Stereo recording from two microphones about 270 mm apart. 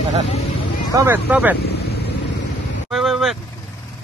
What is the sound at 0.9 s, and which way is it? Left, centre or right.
Speech, centre.